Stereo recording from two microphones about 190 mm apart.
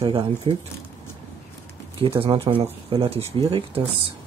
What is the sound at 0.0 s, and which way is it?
Speech, 25° right (ahead or behind).